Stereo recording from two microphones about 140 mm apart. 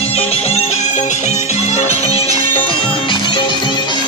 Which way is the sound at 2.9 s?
35° left (ahead or behind).